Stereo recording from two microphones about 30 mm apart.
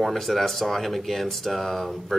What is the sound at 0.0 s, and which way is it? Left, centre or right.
A man's voice, centre.